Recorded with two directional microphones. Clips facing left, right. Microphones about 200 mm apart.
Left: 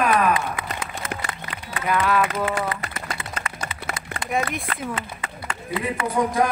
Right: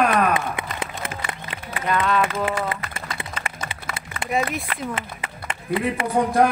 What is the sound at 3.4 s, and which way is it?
Run, 25° right (ahead or behind).